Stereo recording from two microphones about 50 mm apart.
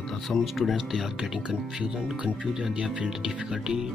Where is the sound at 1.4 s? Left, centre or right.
Centre.